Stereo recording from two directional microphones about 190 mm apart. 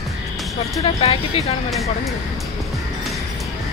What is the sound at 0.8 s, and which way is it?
Speech, 30° left (ahead or behind).